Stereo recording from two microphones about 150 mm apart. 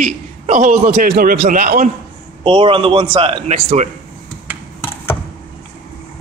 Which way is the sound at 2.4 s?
35° right (ahead or behind).